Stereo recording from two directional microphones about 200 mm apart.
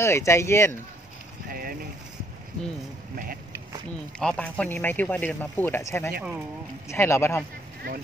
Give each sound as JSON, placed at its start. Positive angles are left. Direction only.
{"t": 0.0, "sound": "speech", "side_deg": 15}
{"t": 1.5, "sound": "vehicle", "side_deg": -45}
{"t": 4.2, "sound": "speech", "side_deg": 5}
{"t": 7.8, "sound": "speech", "side_deg": -45}